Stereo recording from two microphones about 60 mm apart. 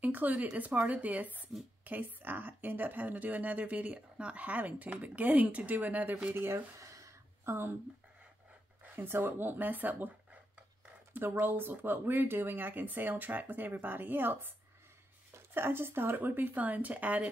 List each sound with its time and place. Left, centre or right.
0.0 s a woman's voice: right
6.3 s speech: right
6.8 s a sound: right
7.4 s speech: right
8.8 s speech: right
11.1 s speech: right